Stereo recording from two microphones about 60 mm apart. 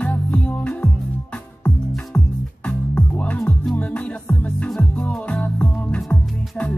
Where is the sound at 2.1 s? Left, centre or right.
Centre.